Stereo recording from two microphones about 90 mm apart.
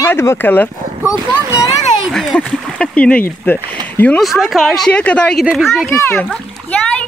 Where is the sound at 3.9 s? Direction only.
15° left (ahead or behind).